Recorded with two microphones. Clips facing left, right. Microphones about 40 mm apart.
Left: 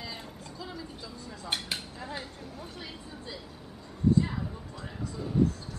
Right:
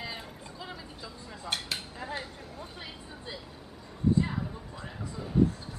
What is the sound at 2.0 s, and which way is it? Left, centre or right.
Speech, centre.